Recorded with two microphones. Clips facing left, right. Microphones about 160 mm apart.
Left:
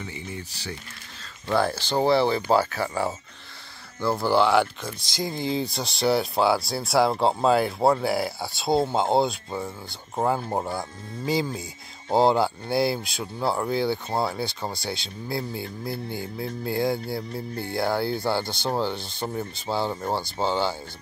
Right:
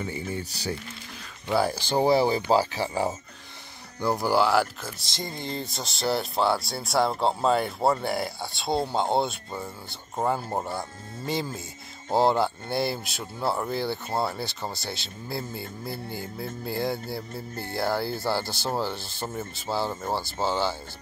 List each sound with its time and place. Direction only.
0.0 s speech: 35° right (ahead or behind)
1.5 s speech: 10° right (ahead or behind)
2.6 s speech: 30° right (ahead or behind)
4.0 s speech: 15° right (ahead or behind)